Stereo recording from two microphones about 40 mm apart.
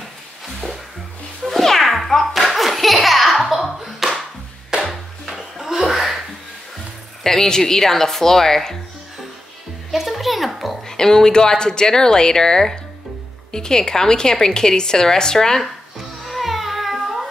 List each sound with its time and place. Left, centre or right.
1.4 s music: centre
7.2 s a woman's voice: centre
9.8 s music: centre
10.9 s a woman's voice: centre
16.3 s music: centre